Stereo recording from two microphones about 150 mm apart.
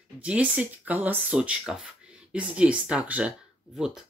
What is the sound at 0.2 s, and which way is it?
Speech, 10° right (ahead or behind).